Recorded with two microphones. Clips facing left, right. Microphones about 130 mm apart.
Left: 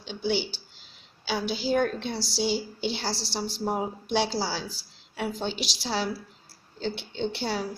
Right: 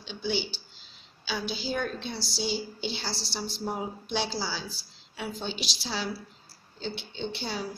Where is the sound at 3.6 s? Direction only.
55° left (ahead or behind); by 4.4 s 75° left (ahead or behind).